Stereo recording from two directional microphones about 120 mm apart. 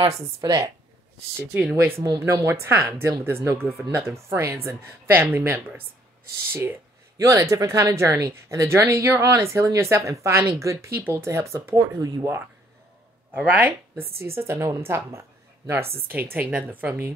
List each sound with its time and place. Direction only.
0.4 s speech: 30° right (ahead or behind)
1.8 s speech: 25° right (ahead or behind)
13.4 s speech: 15° right (ahead or behind)